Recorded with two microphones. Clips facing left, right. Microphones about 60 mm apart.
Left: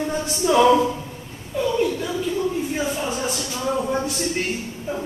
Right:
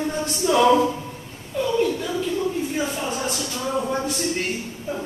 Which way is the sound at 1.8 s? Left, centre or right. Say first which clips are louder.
Even; centre.